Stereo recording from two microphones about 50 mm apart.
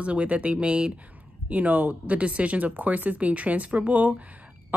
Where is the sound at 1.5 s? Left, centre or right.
Right.